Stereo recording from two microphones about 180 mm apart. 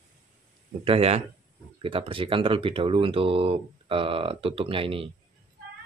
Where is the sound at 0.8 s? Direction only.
35° right (ahead or behind).